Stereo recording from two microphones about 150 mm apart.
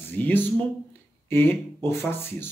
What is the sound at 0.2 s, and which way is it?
Speech, 15° left (ahead or behind).